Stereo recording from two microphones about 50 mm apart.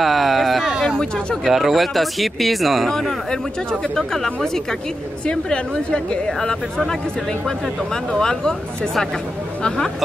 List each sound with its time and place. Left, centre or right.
0.0 s a sound: centre
0.8 s speech: centre
1.5 s speech: centre
5.2 s a woman's voice: centre
6.4 s speech: centre
8.1 s speech: centre